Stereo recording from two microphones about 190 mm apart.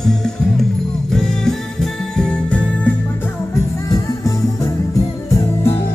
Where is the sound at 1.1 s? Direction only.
5° left (ahead or behind).